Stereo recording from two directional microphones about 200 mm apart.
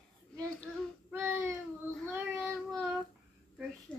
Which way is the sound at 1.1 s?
10° right (ahead or behind).